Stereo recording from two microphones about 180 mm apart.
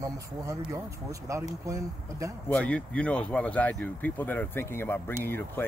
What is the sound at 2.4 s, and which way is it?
Speech, 5° left (ahead or behind).